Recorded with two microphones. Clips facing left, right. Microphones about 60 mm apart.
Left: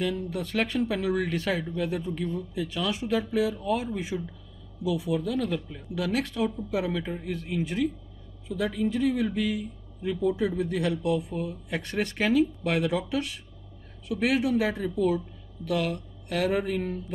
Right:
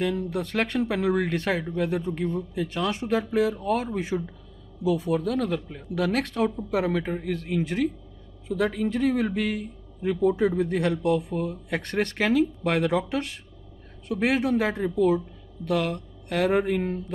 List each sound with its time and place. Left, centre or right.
0.0 s speech: right
14.0 s speech: right
16.3 s speech: right
16.6 s speech: right